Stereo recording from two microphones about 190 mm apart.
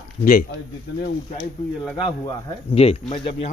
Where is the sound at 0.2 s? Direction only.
45° left (ahead or behind).